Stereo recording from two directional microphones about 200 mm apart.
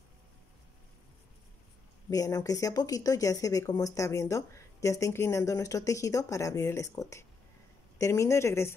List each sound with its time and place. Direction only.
2.0 s speech: 15° left (ahead or behind)